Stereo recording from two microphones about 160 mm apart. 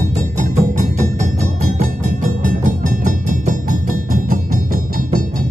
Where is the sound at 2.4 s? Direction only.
55° right (ahead or behind).